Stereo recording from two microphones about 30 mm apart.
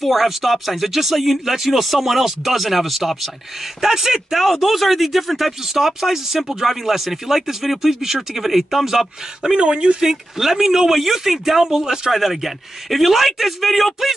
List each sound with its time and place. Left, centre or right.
0.0 s speech: centre
3.8 s speech: centre
4.4 s speech: centre
9.6 s speech: right
9.9 s speech: centre
11.6 s speech: right
12.1 s speech: centre